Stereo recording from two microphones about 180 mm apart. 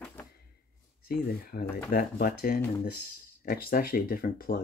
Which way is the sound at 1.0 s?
55° left (ahead or behind).